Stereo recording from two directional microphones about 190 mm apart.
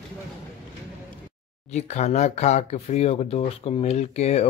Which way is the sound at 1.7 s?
35° left (ahead or behind).